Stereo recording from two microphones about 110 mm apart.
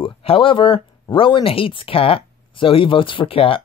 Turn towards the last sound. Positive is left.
turn(degrees=55)  # may be behind; listen again after turning